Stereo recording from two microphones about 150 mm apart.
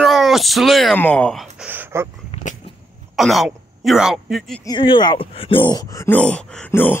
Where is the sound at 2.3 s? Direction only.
40° left (ahead or behind).